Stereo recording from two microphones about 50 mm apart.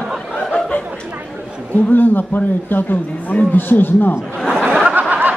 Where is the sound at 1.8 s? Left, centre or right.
Left.